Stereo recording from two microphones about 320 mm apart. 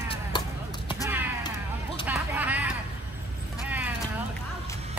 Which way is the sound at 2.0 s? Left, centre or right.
Centre.